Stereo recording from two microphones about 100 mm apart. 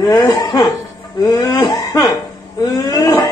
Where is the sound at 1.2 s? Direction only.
40° left (ahead or behind).